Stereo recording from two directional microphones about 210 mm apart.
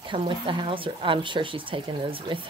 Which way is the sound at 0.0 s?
25° right (ahead or behind).